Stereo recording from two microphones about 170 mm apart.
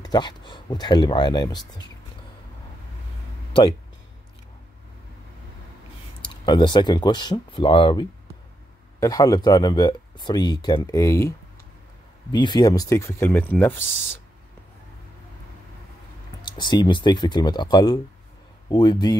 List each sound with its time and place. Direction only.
0.0 s speech: 25° left (ahead or behind)
6.2 s speech: 25° left (ahead or behind)
16.4 s speech: 25° left (ahead or behind)